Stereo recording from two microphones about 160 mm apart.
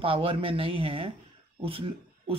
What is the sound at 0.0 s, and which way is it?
Speech, 35° right (ahead or behind).